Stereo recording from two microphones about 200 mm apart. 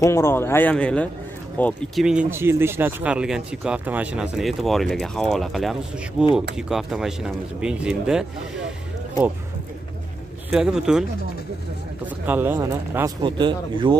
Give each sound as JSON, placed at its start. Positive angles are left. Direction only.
{"t": 0.0, "sound": "speech", "side_deg": 10}
{"t": 2.0, "sound": "speech", "side_deg": -10}
{"t": 10.5, "sound": "speech", "side_deg": -5}
{"t": 12.3, "sound": "speech", "side_deg": -10}